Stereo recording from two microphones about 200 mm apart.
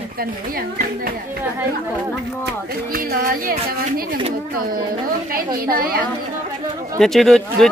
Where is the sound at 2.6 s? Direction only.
50° right (ahead or behind).